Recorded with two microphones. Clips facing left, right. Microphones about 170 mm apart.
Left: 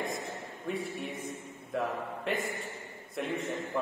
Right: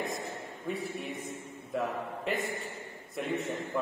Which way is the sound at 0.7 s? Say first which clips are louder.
Even; centre (ahead or behind).